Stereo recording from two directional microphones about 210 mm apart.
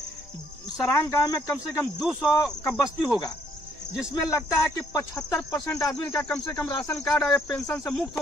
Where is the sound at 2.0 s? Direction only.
5° right (ahead or behind).